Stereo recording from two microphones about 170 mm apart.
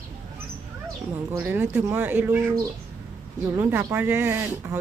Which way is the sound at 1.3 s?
10° right (ahead or behind).